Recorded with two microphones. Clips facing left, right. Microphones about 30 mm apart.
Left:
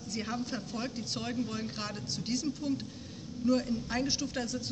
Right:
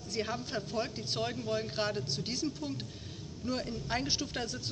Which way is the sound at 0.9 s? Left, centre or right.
Right.